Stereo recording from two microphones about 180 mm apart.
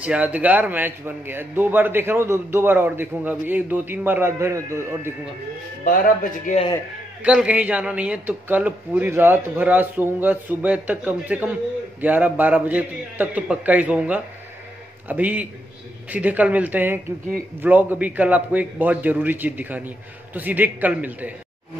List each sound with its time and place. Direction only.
0.0 s speech: 10° right (ahead or behind)
5.9 s speech: 50° left (ahead or behind)
7.2 s speech: 5° right (ahead or behind)